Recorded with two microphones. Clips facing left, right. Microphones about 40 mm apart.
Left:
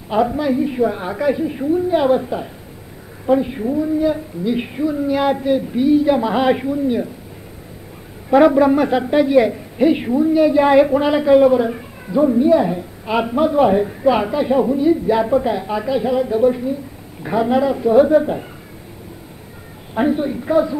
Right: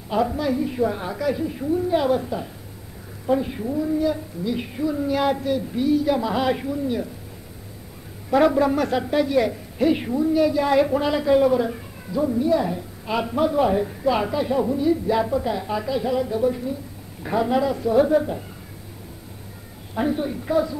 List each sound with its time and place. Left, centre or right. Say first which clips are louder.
0.1 s a woman's voice: left 5 dB; centre
8.3 s a woman's voice: left 6 dB; centre
19.9 s speech: left 6 dB; left